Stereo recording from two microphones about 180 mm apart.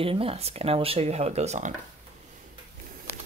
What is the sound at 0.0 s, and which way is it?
Speech, 30° right (ahead or behind).